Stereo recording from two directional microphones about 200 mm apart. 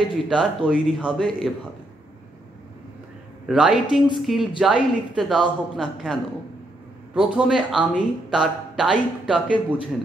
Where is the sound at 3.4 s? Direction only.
5° right (ahead or behind).